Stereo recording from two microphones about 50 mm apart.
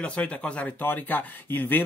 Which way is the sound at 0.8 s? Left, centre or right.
Left.